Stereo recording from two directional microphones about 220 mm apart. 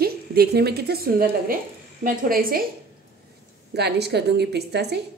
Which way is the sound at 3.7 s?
50° right (ahead or behind).